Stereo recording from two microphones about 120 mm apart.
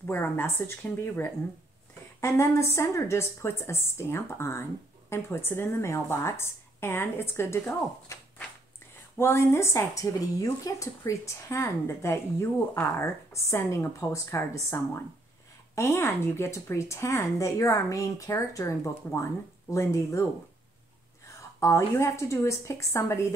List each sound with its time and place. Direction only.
0.0 s a woman's voice: 15° left (ahead or behind)
9.2 s a woman's voice: 20° left (ahead or behind)
21.5 s a woman's voice: 25° left (ahead or behind)